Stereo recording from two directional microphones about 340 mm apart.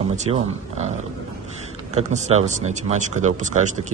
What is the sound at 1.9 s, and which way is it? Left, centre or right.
Speech, centre.